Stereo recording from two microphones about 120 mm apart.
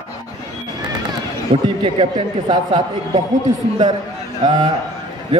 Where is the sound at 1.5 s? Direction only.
50° right (ahead or behind).